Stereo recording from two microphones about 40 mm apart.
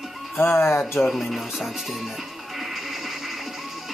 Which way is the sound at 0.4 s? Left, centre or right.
Left.